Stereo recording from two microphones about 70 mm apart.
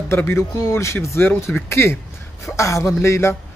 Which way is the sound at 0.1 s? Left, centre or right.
Left.